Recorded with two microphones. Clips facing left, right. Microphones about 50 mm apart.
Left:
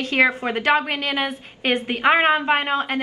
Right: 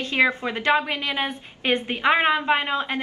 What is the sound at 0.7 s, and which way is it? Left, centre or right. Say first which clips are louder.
Speech: left 2 dB; left.